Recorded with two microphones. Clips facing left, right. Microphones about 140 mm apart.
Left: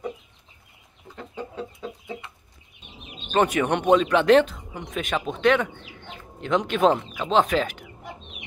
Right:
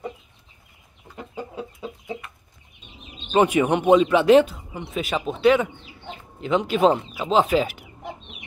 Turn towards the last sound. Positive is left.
turn(degrees=-10)  # may be behind; listen again after turning